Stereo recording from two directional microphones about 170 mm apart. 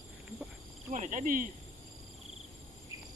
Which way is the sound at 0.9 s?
50° right (ahead or behind).